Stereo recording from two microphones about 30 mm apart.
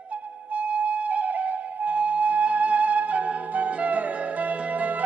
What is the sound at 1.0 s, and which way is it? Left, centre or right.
Music, right.